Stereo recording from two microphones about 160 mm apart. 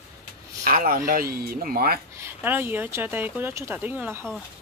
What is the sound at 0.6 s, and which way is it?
Speech, 60° right (ahead or behind).